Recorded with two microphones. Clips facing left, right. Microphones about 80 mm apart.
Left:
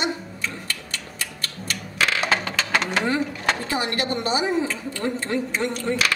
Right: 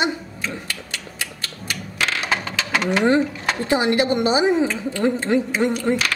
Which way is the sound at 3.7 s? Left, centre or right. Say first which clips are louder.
Right 7 dB; right.